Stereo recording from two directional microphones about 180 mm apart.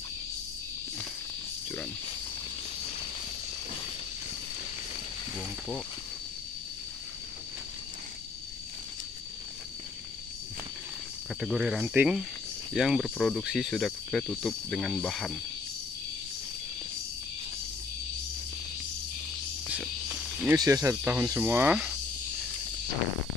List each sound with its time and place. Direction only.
11.4 s cricket: 5° right (ahead or behind)
20.5 s speech: 20° right (ahead or behind)